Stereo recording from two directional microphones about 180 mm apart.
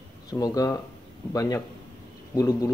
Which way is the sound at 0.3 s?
20° left (ahead or behind).